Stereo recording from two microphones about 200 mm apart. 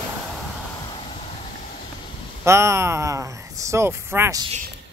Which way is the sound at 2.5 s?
15° right (ahead or behind).